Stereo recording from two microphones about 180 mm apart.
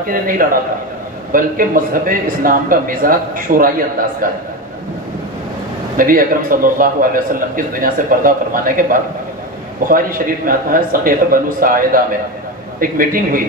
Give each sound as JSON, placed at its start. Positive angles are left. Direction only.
{"t": 0.1, "sound": "a man's voice", "side_deg": -50}
{"t": 5.9, "sound": "a man's voice", "side_deg": -50}